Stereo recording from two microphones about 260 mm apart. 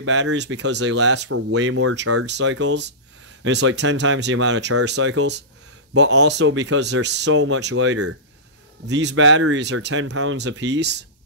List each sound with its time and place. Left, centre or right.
0.0 s speech: right
2.2 s speech: right
8.8 s speech: right
10.0 s speech: right
10.3 s speech: right